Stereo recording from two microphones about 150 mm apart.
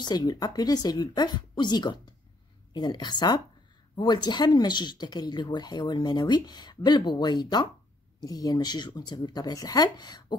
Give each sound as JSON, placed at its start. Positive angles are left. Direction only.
{"t": 0.0, "sound": "speech", "side_deg": 25}